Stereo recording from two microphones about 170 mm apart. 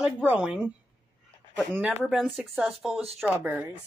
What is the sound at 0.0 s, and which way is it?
Speech, 10° right (ahead or behind).